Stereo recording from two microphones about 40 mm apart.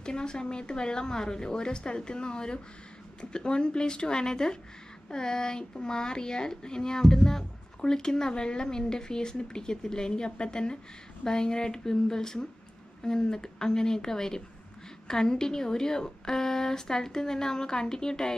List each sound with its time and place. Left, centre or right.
0.0 s a woman's voice: left